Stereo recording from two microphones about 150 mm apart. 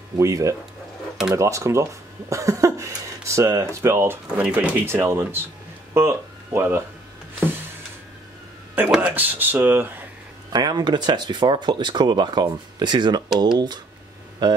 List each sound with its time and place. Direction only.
0.2 s speech: 20° right (ahead or behind)
8.7 s speech: 10° right (ahead or behind)
10.5 s speech: 25° right (ahead or behind)
14.4 s speech: 30° right (ahead or behind)